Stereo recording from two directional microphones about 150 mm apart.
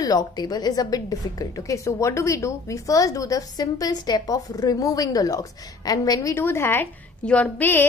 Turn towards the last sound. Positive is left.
turn(degrees=15)  # may be behind; listen again after turning